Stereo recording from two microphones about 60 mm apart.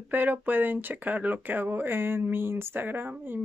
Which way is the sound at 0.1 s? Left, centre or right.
Right.